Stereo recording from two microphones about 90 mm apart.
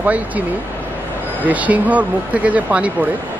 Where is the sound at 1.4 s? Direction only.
15° right (ahead or behind).